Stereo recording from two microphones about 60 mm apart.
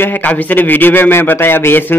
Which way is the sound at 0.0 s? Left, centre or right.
Left.